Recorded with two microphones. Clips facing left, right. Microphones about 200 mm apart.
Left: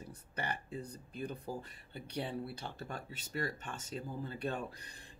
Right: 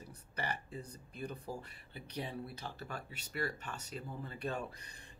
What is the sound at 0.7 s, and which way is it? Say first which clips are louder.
A man's voice: left 3 dB; 30° left (ahead or behind).